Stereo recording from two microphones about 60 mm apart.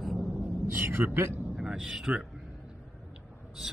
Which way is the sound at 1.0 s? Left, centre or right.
Right.